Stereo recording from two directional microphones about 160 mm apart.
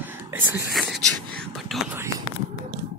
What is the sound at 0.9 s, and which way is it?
Whispering, 5° left (ahead or behind).